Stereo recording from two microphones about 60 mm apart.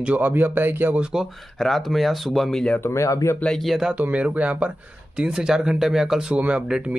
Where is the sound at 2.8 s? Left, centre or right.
Left.